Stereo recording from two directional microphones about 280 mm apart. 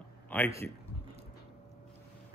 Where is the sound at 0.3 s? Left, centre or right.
Centre.